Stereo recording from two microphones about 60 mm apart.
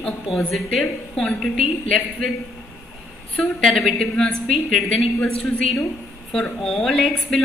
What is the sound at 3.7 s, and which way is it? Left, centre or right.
A woman's voice, centre.